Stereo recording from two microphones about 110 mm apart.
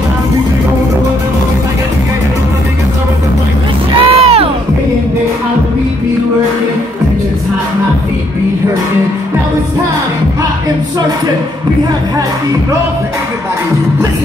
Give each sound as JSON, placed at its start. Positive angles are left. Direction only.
{"t": 4.0, "sound": "music", "side_deg": -65}